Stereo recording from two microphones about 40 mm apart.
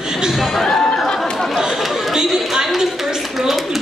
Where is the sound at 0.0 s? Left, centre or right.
Centre.